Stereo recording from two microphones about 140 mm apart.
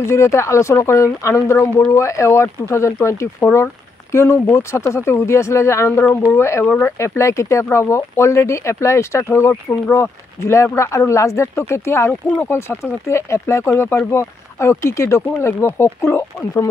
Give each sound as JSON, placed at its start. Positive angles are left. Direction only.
{"t": 0.0, "sound": "speech", "side_deg": 20}